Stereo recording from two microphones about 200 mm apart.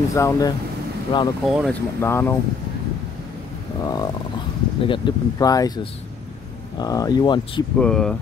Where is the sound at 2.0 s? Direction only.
10° left (ahead or behind).